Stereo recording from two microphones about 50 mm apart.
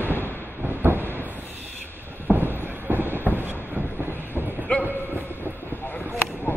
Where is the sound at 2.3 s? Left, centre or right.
Right.